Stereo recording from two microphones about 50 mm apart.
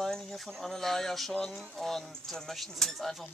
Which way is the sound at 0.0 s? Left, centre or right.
Centre.